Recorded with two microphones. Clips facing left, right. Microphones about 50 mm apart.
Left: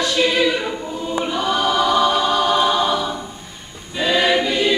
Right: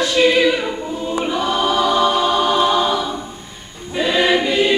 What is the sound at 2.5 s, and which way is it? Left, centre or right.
Choir, centre.